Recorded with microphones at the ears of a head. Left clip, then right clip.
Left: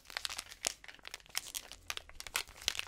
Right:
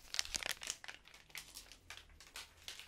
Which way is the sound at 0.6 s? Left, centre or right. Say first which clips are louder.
Left 6 dB; left.